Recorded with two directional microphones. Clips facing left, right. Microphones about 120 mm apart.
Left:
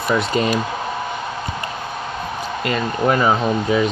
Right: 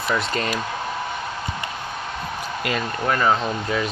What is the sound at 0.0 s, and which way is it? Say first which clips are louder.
Speech: left 5 dB; 10° left (ahead or behind).